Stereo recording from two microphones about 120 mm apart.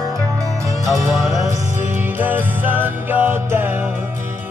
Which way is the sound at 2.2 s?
15° right (ahead or behind).